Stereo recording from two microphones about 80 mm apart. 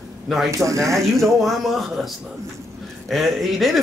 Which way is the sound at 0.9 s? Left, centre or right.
Centre.